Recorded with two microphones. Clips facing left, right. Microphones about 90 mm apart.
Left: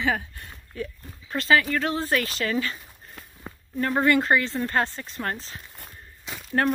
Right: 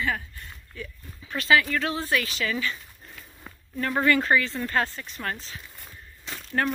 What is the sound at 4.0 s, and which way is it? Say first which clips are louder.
Speech: left 1 dB; 25° left (ahead or behind).